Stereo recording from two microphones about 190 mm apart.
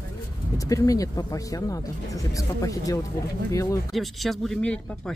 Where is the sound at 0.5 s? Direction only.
15° left (ahead or behind).